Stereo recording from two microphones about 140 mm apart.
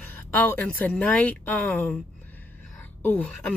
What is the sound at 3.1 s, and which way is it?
Speech, 10° left (ahead or behind).